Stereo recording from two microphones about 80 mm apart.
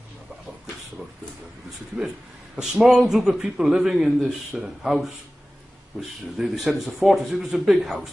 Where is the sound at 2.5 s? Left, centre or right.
Centre.